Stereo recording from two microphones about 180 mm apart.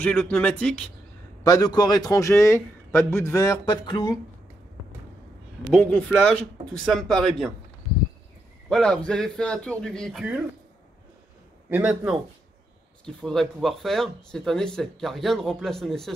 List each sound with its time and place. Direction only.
0.0 s speech: 10° left (ahead or behind)
1.4 s a man's voice: 20° left (ahead or behind)
5.7 s speech: 5° left (ahead or behind)
8.6 s speech: 5° left (ahead or behind)
11.7 s speech: 5° right (ahead or behind)